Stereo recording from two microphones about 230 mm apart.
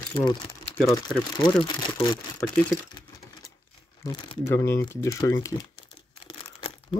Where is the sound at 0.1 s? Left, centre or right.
Centre.